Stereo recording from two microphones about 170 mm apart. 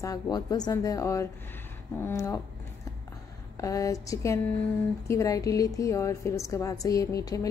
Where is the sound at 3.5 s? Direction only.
20° left (ahead or behind).